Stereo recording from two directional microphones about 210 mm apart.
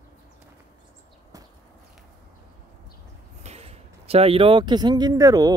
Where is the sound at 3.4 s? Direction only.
30° right (ahead or behind).